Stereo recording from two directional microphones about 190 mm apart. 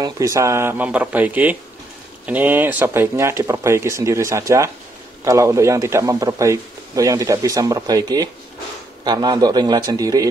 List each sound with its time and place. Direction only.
0.0 s a man's voice: 15° right (ahead or behind)